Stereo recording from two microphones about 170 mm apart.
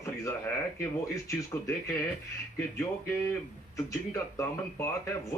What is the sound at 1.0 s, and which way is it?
Speech, 15° left (ahead or behind).